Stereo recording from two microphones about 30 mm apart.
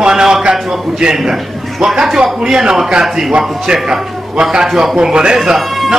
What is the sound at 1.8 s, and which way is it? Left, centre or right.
A man's voice, centre.